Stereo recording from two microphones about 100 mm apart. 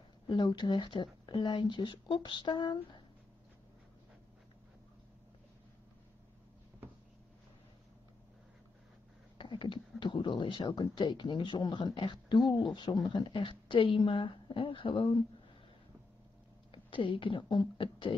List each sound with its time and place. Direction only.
0.3 s speech: 50° left (ahead or behind)
9.4 s speech: 55° left (ahead or behind)
12.4 s speech: centre (ahead or behind)
13.1 s a woman's voice: 55° left (ahead or behind)
16.7 s speech: 55° left (ahead or behind)